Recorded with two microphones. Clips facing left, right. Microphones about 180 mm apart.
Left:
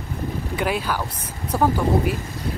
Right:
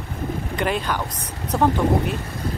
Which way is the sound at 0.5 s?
5° left (ahead or behind).